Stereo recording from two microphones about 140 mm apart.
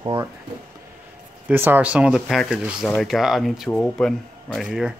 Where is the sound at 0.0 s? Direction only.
25° right (ahead or behind).